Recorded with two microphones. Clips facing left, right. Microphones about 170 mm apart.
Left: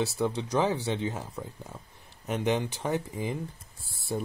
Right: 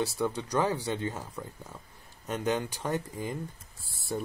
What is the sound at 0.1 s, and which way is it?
Speech, 25° left (ahead or behind).